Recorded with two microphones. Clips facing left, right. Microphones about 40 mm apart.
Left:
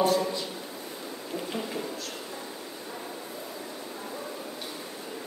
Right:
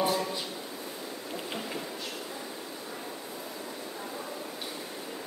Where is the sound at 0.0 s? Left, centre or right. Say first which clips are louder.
Left 4 dB; centre.